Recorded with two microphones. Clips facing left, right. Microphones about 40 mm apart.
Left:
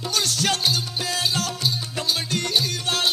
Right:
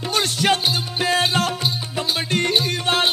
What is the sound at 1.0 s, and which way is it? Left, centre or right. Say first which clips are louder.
Music: right 8 dB; right.